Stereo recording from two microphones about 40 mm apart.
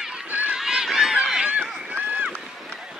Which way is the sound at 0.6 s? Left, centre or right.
Centre.